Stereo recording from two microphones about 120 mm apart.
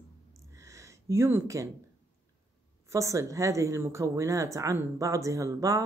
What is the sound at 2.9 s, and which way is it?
Speech, 25° right (ahead or behind).